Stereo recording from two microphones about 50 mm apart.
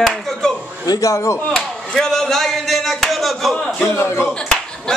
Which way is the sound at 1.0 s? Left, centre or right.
Left.